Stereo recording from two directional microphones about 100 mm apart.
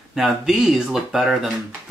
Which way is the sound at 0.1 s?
5° right (ahead or behind).